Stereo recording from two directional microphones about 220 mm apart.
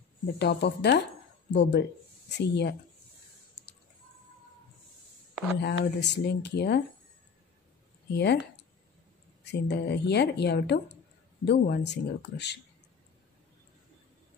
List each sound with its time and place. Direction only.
0.4 s speech: 50° left (ahead or behind)
5.6 s speech: 50° left (ahead or behind)
8.1 s speech: 50° left (ahead or behind)